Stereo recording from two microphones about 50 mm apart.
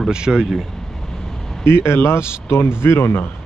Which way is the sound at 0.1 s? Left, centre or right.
Centre.